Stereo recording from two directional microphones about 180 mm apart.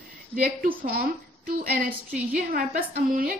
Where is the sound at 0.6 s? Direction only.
55° right (ahead or behind).